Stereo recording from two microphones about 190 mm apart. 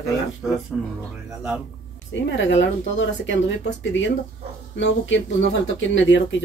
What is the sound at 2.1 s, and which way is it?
Speech, 70° left (ahead or behind).